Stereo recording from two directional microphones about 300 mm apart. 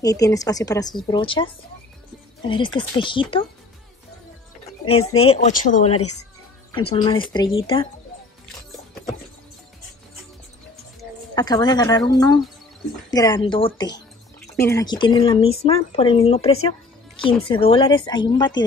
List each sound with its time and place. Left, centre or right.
0.0 s speech: centre
5.1 s speech: centre
11.3 s speech: centre